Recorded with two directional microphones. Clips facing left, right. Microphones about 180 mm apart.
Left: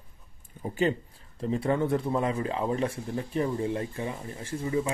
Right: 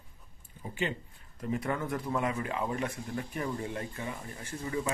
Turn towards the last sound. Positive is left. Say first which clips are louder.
# left 6 dB
turn(degrees=25)  # may be behind; listen again after turning